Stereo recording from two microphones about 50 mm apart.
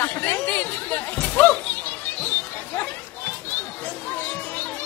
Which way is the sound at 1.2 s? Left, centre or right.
Left.